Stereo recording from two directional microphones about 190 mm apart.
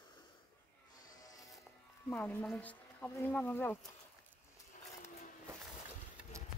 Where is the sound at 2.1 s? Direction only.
10° left (ahead or behind).